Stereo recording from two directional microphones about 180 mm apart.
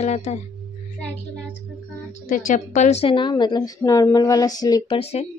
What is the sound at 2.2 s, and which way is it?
A woman's voice, 45° left (ahead or behind).